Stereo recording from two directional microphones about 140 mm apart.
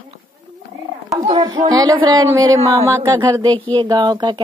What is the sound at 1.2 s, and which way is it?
Speech, 30° right (ahead or behind).